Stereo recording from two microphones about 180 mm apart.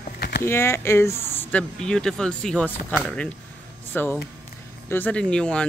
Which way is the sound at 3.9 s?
10° left (ahead or behind).